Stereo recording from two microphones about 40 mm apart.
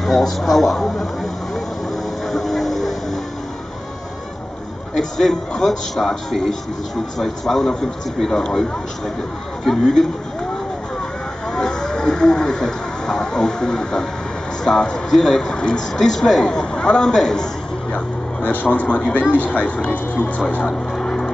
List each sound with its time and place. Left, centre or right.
0.0 s a man's voice: centre
2.2 s music: centre
4.9 s a man's voice: centre
11.5 s speech: centre
17.9 s a man's voice: left
18.9 s speech: left
19.2 s speech: left; by 21.3 s centre